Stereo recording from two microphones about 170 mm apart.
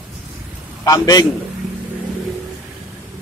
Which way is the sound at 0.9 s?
20° left (ahead or behind).